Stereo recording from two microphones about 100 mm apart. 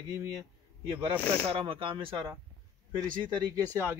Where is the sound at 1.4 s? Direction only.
65° right (ahead or behind).